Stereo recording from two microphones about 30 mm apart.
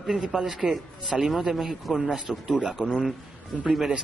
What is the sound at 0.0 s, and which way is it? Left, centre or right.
Speech, centre.